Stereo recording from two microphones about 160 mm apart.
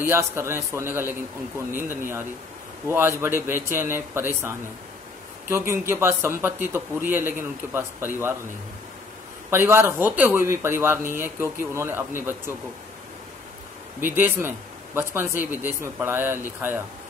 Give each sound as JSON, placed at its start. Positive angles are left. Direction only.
{"t": 0.0, "sound": "speech", "side_deg": -15}
{"t": 9.5, "sound": "speech", "side_deg": -15}
{"t": 14.0, "sound": "speech", "side_deg": -10}